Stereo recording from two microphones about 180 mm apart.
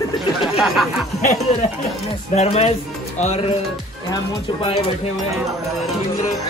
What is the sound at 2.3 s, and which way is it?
Speech, 35° left (ahead or behind).